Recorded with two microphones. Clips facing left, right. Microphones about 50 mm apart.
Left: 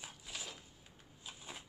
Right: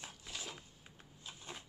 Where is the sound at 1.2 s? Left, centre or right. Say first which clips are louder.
Even; centre.